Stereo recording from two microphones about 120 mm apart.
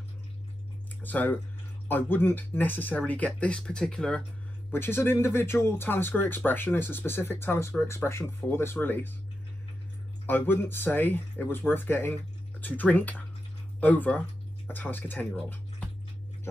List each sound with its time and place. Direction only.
1.0 s speech: 15° left (ahead or behind)
4.6 s speech: 20° left (ahead or behind)
10.2 s speech: 15° left (ahead or behind)